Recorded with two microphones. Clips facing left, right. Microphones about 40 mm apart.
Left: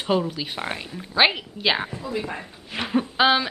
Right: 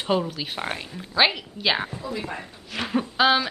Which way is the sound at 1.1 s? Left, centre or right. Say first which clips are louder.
Left 2 dB; centre.